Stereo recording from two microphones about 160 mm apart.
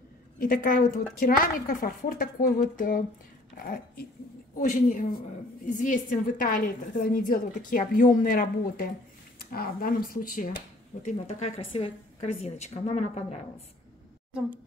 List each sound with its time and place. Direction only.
0.4 s a woman's voice: 55° left (ahead or behind)
4.6 s a woman's voice: 50° left (ahead or behind)
11.0 s a woman's voice: 50° left (ahead or behind)